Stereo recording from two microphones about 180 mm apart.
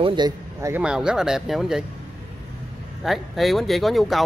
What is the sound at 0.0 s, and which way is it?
Speech, 25° right (ahead or behind).